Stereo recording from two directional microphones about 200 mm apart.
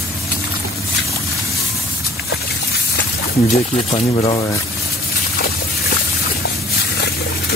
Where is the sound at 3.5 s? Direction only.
30° left (ahead or behind).